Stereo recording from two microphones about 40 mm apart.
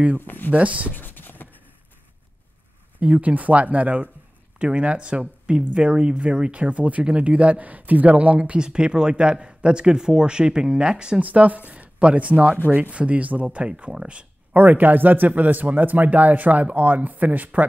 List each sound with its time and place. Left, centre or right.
0.2 s speech: left
0.5 s speech: right
0.9 s a sound: left
3.0 s speech: right
8.4 s speech: right
11.1 s speech: right
14.6 s speech: right